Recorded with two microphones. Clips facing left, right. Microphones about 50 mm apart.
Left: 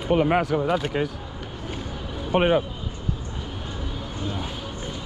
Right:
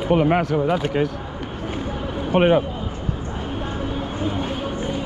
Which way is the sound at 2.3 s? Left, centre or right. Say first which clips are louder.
Right 4 dB; centre.